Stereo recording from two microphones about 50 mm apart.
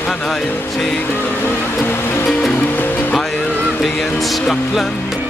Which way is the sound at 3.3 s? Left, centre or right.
Left.